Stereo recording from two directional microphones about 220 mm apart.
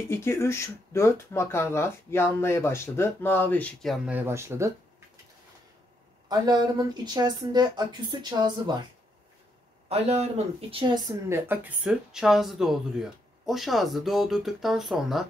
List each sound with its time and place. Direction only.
0.1 s speech: 10° left (ahead or behind); by 4.7 s 10° right (ahead or behind)
6.2 s speech: 20° right (ahead or behind)
9.8 s speech: 30° right (ahead or behind)
11.2 s speech: 10° right (ahead or behind)